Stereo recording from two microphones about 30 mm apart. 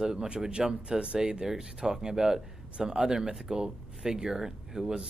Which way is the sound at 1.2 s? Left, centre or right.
Right.